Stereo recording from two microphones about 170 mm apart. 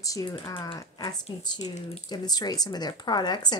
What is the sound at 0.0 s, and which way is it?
Speech, 20° left (ahead or behind).